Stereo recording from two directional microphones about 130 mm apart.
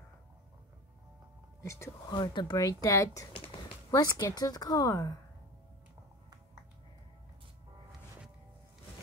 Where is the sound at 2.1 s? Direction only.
35° left (ahead or behind).